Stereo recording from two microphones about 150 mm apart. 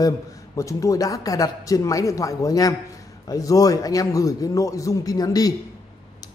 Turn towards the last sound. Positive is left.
turn(degrees=25)  # may be behind; listen again after turning